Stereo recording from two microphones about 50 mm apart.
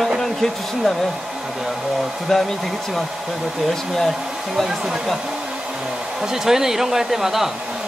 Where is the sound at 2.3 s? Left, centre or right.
Centre.